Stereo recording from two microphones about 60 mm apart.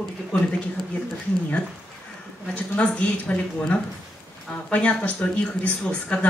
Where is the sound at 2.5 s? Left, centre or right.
Left.